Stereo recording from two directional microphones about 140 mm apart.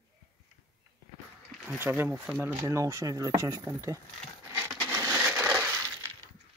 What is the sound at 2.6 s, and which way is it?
Speech, 20° right (ahead or behind).